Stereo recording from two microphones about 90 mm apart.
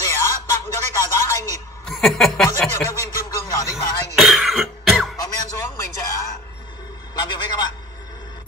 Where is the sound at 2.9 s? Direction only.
40° left (ahead or behind).